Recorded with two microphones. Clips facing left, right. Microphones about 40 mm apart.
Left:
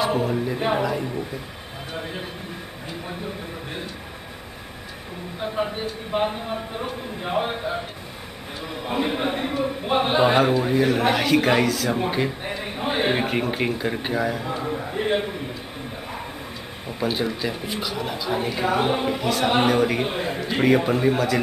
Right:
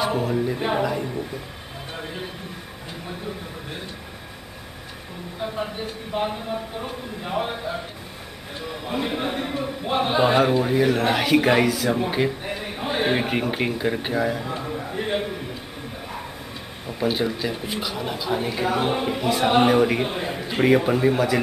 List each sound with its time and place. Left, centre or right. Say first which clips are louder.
0.0 s a man's voice: even; centre
6.1 s speech: left 2 dB; left
6.8 s speech: left 2 dB; centre
8.8 s a man's voice: left 2 dB; centre
12.4 s a sound: left 1 dB; centre
12.8 s a man's voice: even; centre
14.6 s a sound: left 2 dB; centre
17.0 s a man's voice: right 1 dB; centre
19.0 s a man's voice: right 1 dB; centre